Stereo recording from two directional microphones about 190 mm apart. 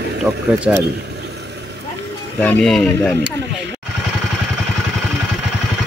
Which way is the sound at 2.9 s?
15° left (ahead or behind).